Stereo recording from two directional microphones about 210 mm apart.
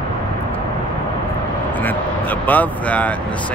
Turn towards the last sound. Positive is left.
turn(degrees=5)  # may be behind; listen again after turning